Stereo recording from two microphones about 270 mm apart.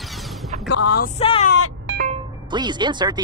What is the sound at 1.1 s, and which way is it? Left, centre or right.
Speech, left.